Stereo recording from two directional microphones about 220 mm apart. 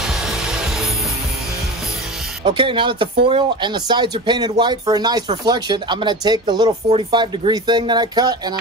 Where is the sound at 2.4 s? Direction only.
20° right (ahead or behind).